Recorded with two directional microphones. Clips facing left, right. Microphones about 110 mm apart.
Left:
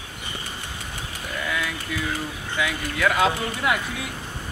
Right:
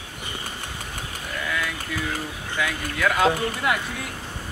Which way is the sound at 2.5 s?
5° left (ahead or behind).